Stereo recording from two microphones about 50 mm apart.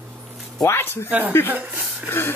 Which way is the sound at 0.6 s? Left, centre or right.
Left.